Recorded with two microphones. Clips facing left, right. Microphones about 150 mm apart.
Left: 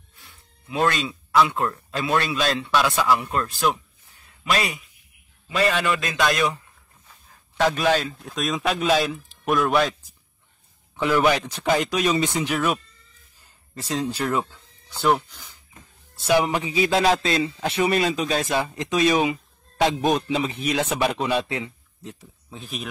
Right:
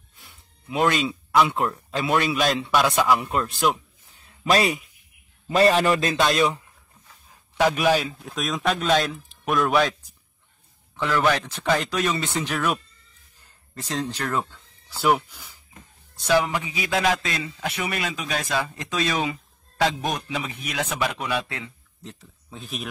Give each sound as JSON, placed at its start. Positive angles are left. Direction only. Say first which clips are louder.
{"t": 0.2, "sound": "speech", "louder": "right 1 dB", "side_deg": -20}
{"t": 4.5, "sound": "a man's voice", "louder": "right 4 dB", "side_deg": -30}
{"t": 6.2, "sound": "speech", "louder": "left 1 dB", "side_deg": -20}
{"t": 7.5, "sound": "a man's voice", "louder": "even", "side_deg": -10}
{"t": 11.0, "sound": "speech", "louder": "left 2 dB", "side_deg": 15}
{"t": 14.9, "sound": "speech", "louder": "even", "side_deg": -5}
{"t": 16.3, "sound": "speech", "louder": "left 3 dB", "side_deg": 25}
{"t": 22.5, "sound": "a man's voice", "louder": "even", "side_deg": 0}